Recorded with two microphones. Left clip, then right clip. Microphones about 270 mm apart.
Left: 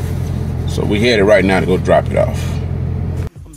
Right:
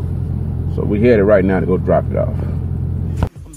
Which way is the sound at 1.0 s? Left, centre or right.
Left.